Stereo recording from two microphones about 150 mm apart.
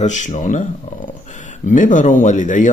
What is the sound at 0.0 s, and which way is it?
Speech, 50° left (ahead or behind).